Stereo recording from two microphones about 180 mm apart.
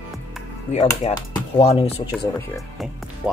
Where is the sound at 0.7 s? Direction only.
40° left (ahead or behind).